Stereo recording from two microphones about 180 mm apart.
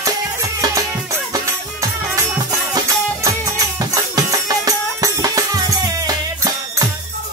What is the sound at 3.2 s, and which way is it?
Music, 20° right (ahead or behind).